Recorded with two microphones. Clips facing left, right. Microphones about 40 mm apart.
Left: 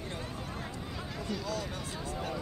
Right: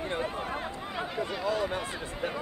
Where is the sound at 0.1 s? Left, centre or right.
Right.